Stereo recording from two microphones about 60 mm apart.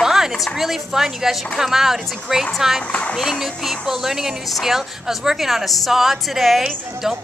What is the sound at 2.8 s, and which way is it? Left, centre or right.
Speech, centre.